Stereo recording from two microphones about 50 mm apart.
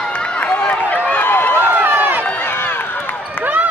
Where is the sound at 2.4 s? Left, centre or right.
Left.